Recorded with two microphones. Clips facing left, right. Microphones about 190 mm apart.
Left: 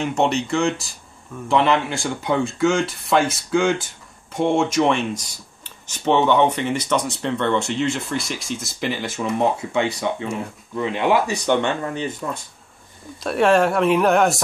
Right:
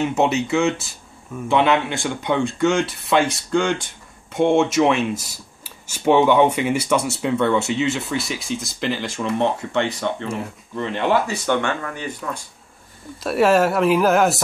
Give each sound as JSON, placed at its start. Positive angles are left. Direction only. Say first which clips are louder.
{"t": 0.0, "sound": "speech", "louder": "right 1 dB", "side_deg": -5}
{"t": 10.2, "sound": "speech", "louder": "even", "side_deg": 0}
{"t": 10.8, "sound": "speech", "louder": "left 1 dB", "side_deg": 10}
{"t": 13.2, "sound": "speech", "louder": "even", "side_deg": -5}